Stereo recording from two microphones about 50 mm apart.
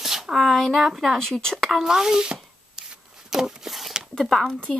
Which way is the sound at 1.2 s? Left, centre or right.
Centre.